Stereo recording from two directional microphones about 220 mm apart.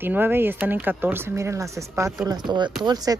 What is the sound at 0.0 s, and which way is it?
Speech, 10° right (ahead or behind).